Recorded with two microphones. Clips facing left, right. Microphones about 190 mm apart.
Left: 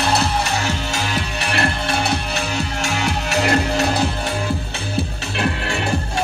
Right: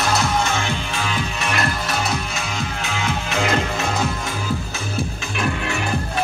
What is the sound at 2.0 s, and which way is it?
Music, 65° left (ahead or behind).